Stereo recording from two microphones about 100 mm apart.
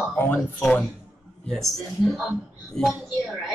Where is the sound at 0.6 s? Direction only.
10° left (ahead or behind).